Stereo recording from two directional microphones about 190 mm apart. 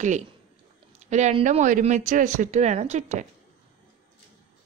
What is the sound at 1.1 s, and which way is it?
Speech, 40° right (ahead or behind).